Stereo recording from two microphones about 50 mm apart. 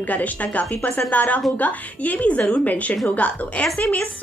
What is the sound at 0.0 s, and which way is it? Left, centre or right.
A woman's voice, left.